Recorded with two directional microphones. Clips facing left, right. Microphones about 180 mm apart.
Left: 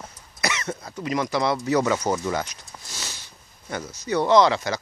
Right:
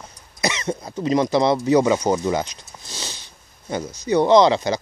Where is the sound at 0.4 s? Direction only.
20° right (ahead or behind).